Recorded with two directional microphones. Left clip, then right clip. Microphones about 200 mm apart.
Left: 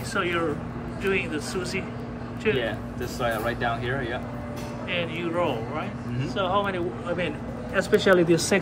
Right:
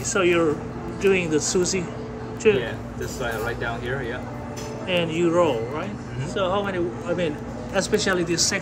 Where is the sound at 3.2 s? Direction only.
50° left (ahead or behind).